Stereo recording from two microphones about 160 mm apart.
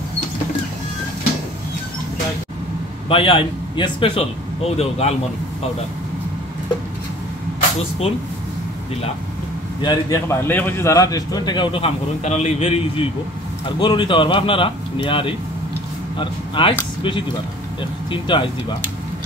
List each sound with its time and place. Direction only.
3.1 s speech: 35° left (ahead or behind)
9.8 s a man's voice: 25° left (ahead or behind)